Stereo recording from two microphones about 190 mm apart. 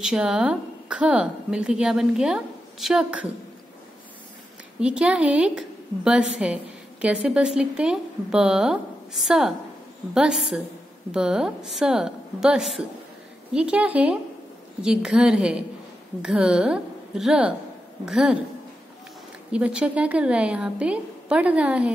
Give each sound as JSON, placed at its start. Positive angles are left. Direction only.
{"t": 0.0, "sound": "a woman's voice", "side_deg": -5}
{"t": 4.7, "sound": "a woman's voice", "side_deg": -5}
{"t": 19.5, "sound": "a woman's voice", "side_deg": -5}